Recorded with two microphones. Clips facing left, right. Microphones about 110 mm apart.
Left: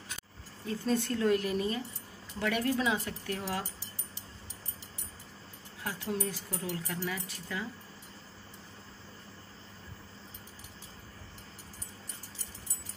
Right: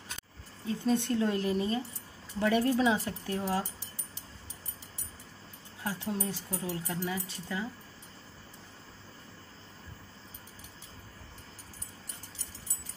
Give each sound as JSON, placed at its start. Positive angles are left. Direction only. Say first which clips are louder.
{"t": 0.7, "sound": "speech", "louder": "right 2 dB", "side_deg": -20}
{"t": 5.9, "sound": "speech", "louder": "right 1 dB", "side_deg": -25}